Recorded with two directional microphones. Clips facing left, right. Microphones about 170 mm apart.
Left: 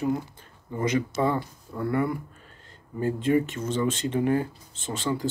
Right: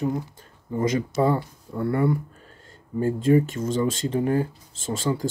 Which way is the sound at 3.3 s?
35° right (ahead or behind).